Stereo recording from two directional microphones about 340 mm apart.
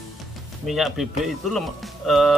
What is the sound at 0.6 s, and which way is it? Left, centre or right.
Speech, centre.